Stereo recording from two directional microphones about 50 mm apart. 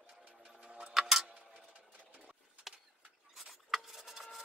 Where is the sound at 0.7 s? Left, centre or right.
Centre.